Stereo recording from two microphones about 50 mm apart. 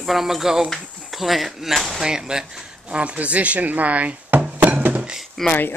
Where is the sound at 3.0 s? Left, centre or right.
Right.